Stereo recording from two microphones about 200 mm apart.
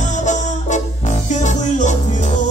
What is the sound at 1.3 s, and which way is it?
Music, 35° left (ahead or behind).